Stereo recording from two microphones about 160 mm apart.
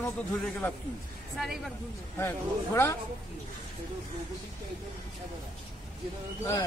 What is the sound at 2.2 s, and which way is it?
Speech, 15° left (ahead or behind).